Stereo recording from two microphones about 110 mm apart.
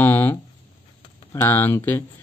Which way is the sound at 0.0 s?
20° left (ahead or behind).